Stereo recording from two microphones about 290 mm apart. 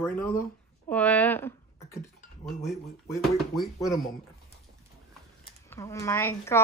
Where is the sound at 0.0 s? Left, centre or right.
Centre.